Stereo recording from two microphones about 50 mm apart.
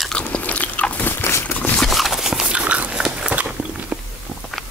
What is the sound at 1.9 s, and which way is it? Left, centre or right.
Clip-clop, centre.